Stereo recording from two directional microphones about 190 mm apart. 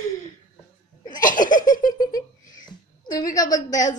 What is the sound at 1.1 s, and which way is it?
Laughter, 45° left (ahead or behind).